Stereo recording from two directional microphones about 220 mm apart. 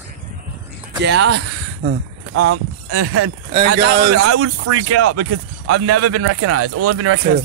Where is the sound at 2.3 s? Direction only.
90° right.